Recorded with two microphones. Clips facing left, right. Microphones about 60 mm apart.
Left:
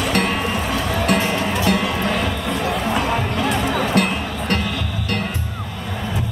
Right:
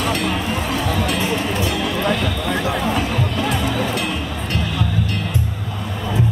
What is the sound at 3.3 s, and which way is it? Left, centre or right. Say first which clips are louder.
Music: left 1 dB; left.